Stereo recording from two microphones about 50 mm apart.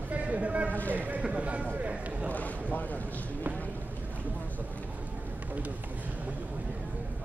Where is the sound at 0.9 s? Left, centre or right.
Right.